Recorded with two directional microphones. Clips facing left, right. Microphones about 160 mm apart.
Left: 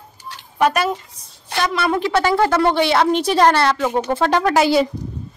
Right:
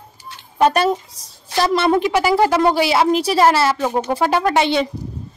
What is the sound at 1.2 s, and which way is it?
Speech, 90° right.